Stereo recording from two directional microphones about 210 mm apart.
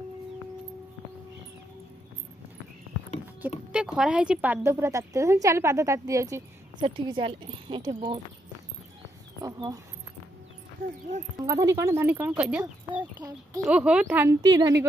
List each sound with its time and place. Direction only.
3.7 s a woman's voice: 5° right (ahead or behind); by 8.2 s 25° right (ahead or behind)
9.4 s speech: 15° right (ahead or behind)
11.3 s a woman's voice: 15° right (ahead or behind)